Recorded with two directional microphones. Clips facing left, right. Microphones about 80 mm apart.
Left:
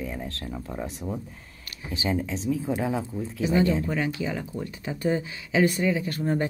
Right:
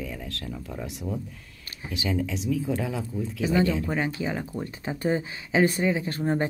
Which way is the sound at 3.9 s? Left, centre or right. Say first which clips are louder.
Even; right.